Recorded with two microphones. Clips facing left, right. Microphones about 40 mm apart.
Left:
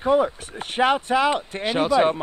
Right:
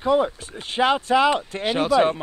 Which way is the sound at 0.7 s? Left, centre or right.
Right.